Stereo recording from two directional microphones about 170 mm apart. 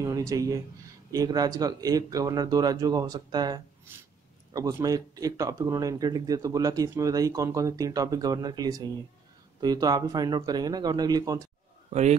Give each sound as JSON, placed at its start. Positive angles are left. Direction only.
{"t": 0.0, "sound": "speech", "side_deg": -20}
{"t": 11.9, "sound": "a man's voice", "side_deg": -40}